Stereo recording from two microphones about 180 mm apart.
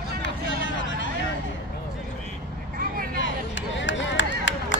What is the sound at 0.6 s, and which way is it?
Vehicle, 90° left.